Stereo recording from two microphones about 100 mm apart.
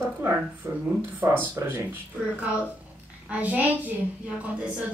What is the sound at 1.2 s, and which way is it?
Speech, 25° right (ahead or behind).